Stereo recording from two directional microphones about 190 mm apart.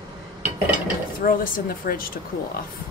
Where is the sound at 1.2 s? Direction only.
45° left (ahead or behind).